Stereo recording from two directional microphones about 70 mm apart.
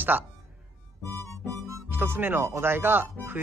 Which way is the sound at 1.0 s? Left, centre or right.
Right.